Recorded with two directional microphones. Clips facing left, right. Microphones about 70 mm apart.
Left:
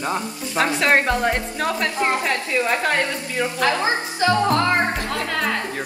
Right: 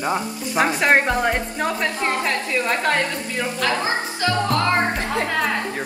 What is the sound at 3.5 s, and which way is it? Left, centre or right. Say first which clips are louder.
Speech: left 2 dB; left.